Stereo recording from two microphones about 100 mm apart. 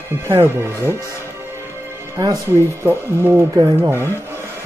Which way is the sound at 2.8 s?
25° right (ahead or behind).